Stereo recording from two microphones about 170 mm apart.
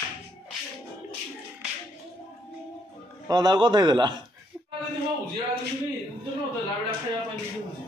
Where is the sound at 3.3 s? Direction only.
25° right (ahead or behind).